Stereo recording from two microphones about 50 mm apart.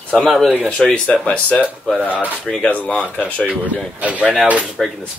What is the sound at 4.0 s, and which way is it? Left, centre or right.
Speech, right.